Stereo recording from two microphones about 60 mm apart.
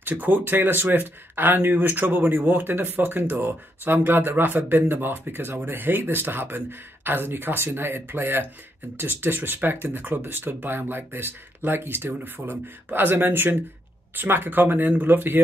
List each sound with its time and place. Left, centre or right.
0.0 s speech: right